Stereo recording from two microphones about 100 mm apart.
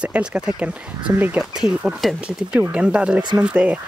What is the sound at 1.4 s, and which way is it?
Speech, 5° right (ahead or behind).